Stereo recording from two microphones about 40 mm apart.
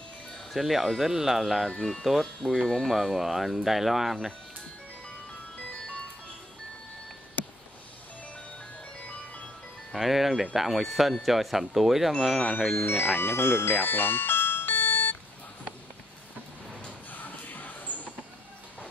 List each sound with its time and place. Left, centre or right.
0.5 s speech: centre
9.9 s speech: centre
12.7 s speech: left
13.2 s speech: left
13.7 s music: left
17.1 s a sound: left